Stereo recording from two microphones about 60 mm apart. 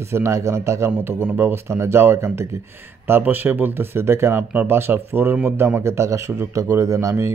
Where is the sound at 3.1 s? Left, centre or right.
Right.